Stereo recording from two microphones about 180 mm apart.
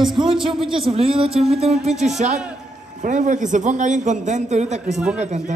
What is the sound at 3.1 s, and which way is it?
A woman's voice, 45° right (ahead or behind).